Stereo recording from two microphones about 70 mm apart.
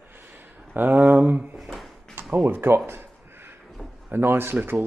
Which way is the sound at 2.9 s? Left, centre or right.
Right.